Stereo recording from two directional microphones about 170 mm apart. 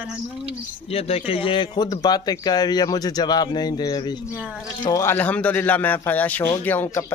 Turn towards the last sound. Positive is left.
turn(degrees=15)  # may be behind; listen again after turning